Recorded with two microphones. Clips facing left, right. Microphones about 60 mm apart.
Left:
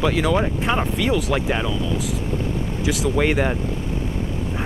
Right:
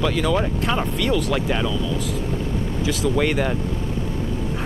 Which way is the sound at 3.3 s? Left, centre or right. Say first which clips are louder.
Left 1 dB; centre.